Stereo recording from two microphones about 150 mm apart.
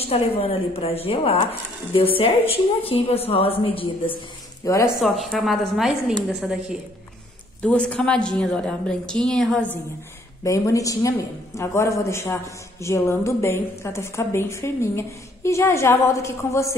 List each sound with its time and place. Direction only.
0.0 s a woman's voice: 40° left (ahead or behind)
4.8 s a woman's voice: centre (ahead or behind)
10.4 s a woman's voice: 20° left (ahead or behind)